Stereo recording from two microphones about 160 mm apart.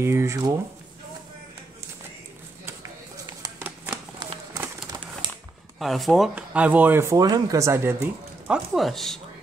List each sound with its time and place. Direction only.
0.0 s speech: 15° right (ahead or behind)
3.4 s a sound: 15° right (ahead or behind)
5.8 s speech: centre (ahead or behind); by 7.9 s 15° right (ahead or behind)
8.5 s speech: centre (ahead or behind)